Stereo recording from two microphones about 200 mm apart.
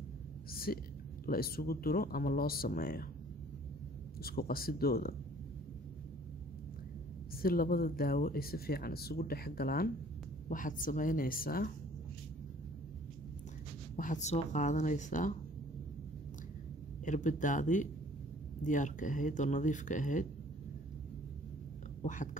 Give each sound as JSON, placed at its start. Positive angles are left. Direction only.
{"t": 0.5, "sound": "whispering", "side_deg": 50}
{"t": 1.2, "sound": "speech", "side_deg": 50}
{"t": 4.2, "sound": "speech", "side_deg": 50}
{"t": 7.4, "sound": "speech", "side_deg": 45}
{"t": 13.9, "sound": "speech", "side_deg": 40}
{"t": 17.0, "sound": "speech", "side_deg": 40}
{"t": 22.0, "sound": "speech", "side_deg": 40}